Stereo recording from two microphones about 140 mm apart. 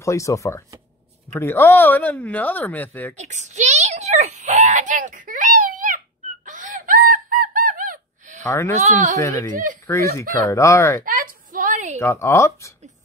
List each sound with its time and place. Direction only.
0.0 s speech: 20° left (ahead or behind)
3.2 s a sound: 55° right (ahead or behind); by 8.4 s 80° right
8.5 s speech: 20° left (ahead or behind)
9.5 s speech: 70° right (ahead or behind)
10.3 s speech: 20° left (ahead or behind)
11.1 s a sound: 75° right (ahead or behind)
12.0 s speech: 20° left (ahead or behind)